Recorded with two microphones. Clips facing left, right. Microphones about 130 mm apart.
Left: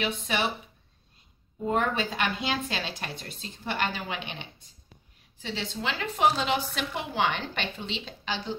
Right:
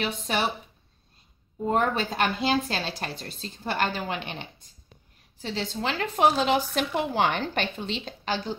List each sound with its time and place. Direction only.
0.0 s speech: 40° right (ahead or behind)
1.7 s a woman's voice: 40° right (ahead or behind)